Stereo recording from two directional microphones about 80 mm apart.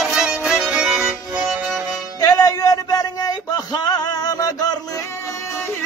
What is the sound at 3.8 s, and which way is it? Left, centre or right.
Music, left.